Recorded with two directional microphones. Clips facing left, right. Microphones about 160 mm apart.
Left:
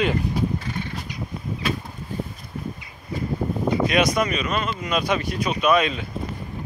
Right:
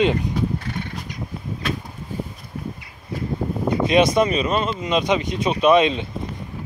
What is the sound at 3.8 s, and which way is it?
Speech, 25° right (ahead or behind).